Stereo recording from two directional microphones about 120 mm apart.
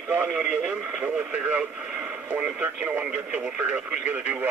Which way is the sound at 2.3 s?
10° right (ahead or behind).